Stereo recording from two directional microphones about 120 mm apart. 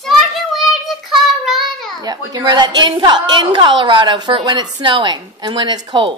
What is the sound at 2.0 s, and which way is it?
A woman's voice, 35° right (ahead or behind).